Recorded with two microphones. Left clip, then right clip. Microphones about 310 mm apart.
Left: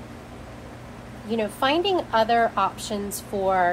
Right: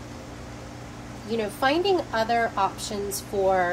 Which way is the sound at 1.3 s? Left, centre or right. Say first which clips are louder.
Left 1 dB; centre.